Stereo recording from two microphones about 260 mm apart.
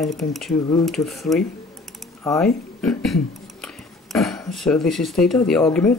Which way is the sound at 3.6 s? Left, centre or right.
Centre.